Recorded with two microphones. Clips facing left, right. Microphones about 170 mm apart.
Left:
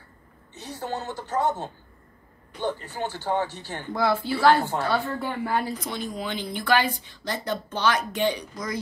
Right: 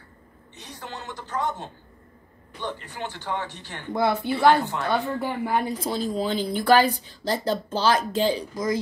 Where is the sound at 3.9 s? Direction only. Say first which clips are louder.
Right 1 dB; 20° right (ahead or behind).